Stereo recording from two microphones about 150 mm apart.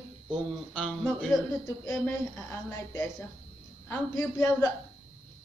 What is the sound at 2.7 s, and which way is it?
A woman's voice, 20° left (ahead or behind).